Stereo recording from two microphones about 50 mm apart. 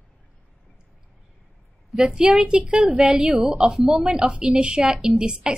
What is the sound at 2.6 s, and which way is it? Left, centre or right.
A woman's voice, right.